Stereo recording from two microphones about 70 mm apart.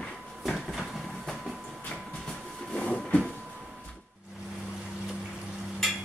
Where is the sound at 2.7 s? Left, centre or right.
Centre.